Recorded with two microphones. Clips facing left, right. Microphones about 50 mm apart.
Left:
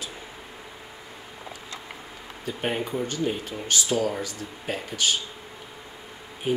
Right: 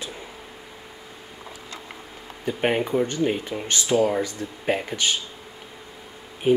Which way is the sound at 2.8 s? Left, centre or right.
Right.